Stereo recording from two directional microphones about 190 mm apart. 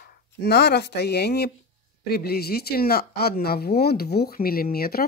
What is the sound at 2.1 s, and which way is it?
Speech, 55° left (ahead or behind).